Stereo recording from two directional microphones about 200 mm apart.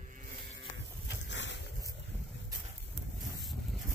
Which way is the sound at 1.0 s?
65° left (ahead or behind).